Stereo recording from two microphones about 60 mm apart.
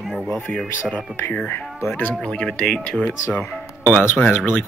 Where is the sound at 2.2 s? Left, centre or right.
Centre.